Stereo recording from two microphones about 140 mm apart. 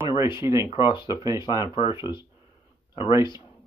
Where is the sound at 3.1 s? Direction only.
30° left (ahead or behind).